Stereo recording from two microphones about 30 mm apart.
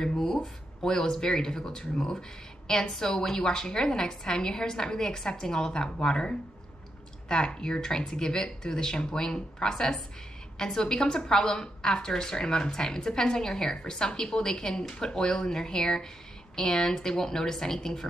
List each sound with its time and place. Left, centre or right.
0.4 s a woman's voice: left